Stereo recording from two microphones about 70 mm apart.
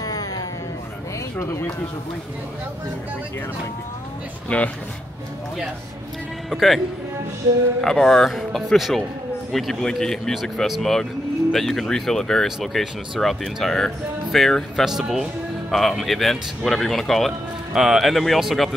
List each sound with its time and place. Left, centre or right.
0.0 s music: left
1.4 s speech: left
4.5 s speech: centre
6.5 s speech: centre
7.8 s a man's voice: centre